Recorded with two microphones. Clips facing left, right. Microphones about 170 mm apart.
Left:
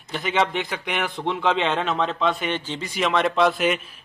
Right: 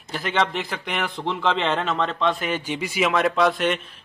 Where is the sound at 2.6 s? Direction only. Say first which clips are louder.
Right 2 dB; 10° right (ahead or behind).